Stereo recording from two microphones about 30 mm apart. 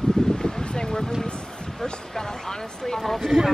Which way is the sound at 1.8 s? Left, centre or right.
Centre.